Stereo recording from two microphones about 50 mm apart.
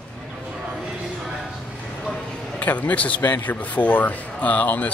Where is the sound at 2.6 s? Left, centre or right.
Left.